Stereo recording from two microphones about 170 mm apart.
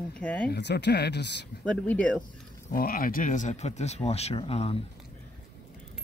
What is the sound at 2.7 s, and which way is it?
Speech, 60° left (ahead or behind).